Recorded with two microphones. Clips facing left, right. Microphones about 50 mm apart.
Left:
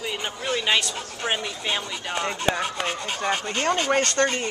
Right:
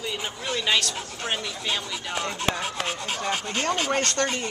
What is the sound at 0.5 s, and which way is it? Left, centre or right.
Speech, centre.